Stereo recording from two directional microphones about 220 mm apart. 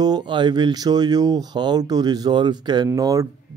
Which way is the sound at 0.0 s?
20° right (ahead or behind).